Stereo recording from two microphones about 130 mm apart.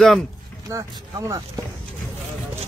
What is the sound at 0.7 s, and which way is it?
Speech, 25° right (ahead or behind).